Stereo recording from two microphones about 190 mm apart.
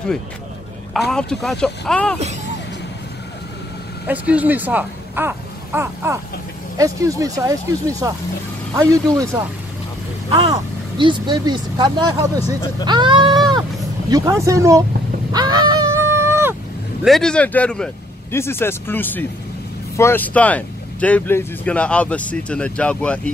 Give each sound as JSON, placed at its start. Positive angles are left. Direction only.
{"t": 0.9, "sound": "speech", "side_deg": 0}
{"t": 4.1, "sound": "speech", "side_deg": -10}
{"t": 11.0, "sound": "speech", "side_deg": -25}
{"t": 15.3, "sound": "a sound", "side_deg": -20}
{"t": 17.0, "sound": "speech", "side_deg": 0}